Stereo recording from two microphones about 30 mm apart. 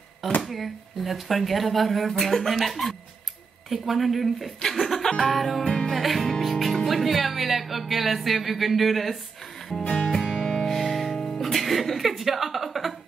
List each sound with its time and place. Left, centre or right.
0.5 s speech: centre
4.6 s music: centre
5.3 s speech: centre
5.6 s music: left
5.9 s music: centre
6.4 s speech: centre
10.2 s music: centre
10.7 s music: centre
11.1 s music: centre
11.5 s chuckle: centre